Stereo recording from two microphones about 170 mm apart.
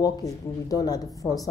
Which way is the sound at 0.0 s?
20° left (ahead or behind).